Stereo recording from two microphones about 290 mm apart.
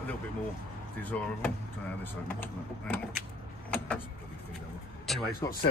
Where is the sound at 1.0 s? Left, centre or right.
Centre.